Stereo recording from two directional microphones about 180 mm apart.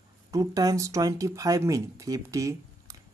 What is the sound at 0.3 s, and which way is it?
Speech, 20° right (ahead or behind).